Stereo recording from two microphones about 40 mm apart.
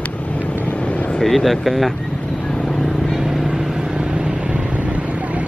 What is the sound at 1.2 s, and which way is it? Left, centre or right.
Speech, centre.